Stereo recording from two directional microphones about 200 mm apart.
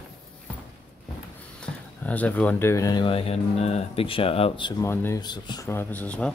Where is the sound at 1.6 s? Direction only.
5° left (ahead or behind); by 4.7 s 25° left (ahead or behind).